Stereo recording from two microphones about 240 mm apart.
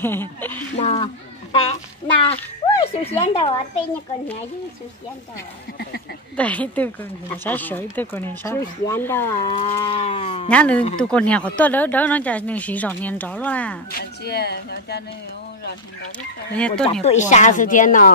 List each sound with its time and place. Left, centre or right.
0.0 s speech: centre
0.7 s a child's voice: left
3.2 s livestock: left
6.3 s a woman's voice: centre
9.6 s livestock: left
10.5 s a woman's voice: centre
13.9 s speech: left
16.5 s a woman's voice: centre
17.0 s speech: left